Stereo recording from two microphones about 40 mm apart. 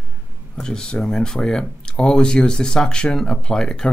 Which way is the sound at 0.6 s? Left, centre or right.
Centre.